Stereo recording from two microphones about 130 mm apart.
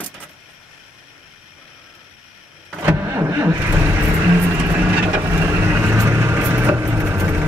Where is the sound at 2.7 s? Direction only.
15° right (ahead or behind).